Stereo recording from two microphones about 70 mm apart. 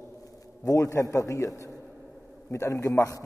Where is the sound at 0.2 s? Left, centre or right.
Left.